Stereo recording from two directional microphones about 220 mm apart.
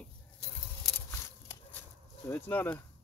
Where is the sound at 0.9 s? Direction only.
10° left (ahead or behind).